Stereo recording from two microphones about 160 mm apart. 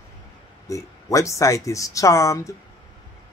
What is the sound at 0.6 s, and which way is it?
Speech, 20° left (ahead or behind).